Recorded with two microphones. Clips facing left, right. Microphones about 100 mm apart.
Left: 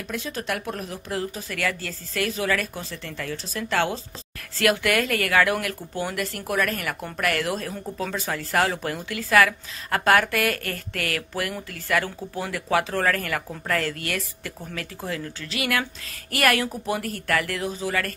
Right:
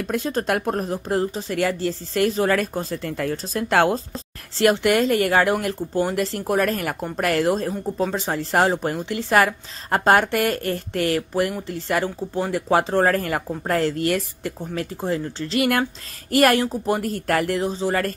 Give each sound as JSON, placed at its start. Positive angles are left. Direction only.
{"t": 0.0, "sound": "speech", "side_deg": -40}
{"t": 4.6, "sound": "speech", "side_deg": -25}
{"t": 7.7, "sound": "speech", "side_deg": -15}
{"t": 8.1, "sound": "speech", "side_deg": -30}